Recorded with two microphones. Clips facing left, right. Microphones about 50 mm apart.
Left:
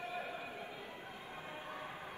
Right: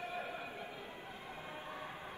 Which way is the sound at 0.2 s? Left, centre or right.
Right.